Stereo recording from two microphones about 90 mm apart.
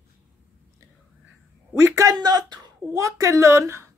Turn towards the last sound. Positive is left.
turn(degrees=-30)  # may be behind; listen again after turning